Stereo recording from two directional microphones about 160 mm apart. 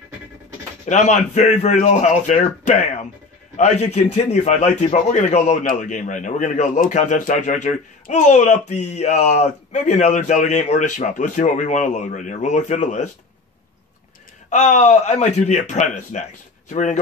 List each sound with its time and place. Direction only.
0.8 s a man's voice: 50° left (ahead or behind)
14.5 s a man's voice: 50° left (ahead or behind)